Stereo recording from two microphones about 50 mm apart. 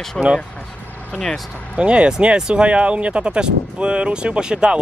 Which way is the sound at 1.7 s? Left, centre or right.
Right.